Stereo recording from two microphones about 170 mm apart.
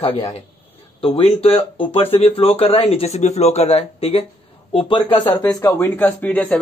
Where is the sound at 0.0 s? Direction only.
35° left (ahead or behind).